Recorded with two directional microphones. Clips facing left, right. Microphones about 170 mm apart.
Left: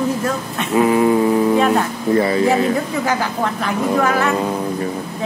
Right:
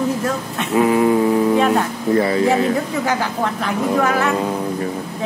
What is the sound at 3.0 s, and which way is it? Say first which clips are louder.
A woman's voice: left 1 dB; centre (ahead or behind).